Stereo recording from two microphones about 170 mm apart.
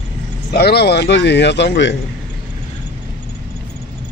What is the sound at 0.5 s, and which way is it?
A man's voice, 70° left (ahead or behind).